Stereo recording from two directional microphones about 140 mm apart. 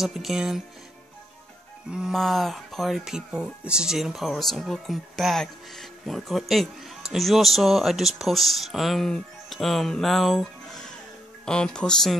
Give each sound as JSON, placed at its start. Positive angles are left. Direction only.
{"t": 0.0, "sound": "speech", "side_deg": 0}
{"t": 1.9, "sound": "speech", "side_deg": -5}